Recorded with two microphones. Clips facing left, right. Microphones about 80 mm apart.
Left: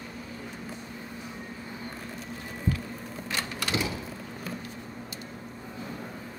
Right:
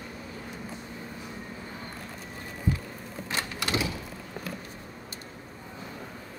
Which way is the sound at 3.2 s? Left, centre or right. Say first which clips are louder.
Right 1 dB; right.